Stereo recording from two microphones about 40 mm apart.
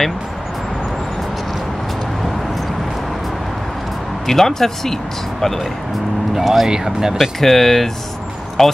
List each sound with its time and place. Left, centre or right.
4.3 s speech: centre
6.3 s speech: centre
7.2 s speech: centre